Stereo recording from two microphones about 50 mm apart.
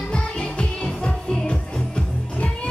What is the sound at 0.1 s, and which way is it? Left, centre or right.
Music, left.